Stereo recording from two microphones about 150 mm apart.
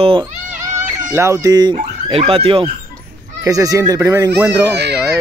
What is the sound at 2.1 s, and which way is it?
Speech, 40° right (ahead or behind).